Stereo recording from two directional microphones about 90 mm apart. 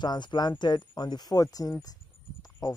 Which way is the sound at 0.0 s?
55° left (ahead or behind).